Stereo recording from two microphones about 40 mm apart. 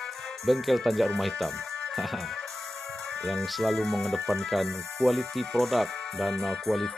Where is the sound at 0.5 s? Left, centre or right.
Centre.